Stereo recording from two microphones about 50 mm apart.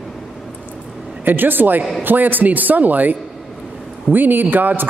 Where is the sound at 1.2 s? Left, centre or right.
Right.